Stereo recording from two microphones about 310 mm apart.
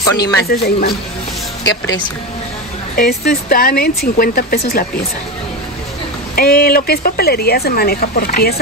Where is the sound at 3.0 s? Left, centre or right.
Left.